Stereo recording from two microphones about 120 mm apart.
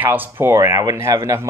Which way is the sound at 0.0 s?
15° right (ahead or behind).